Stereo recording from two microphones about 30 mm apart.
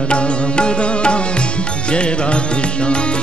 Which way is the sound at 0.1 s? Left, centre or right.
Left.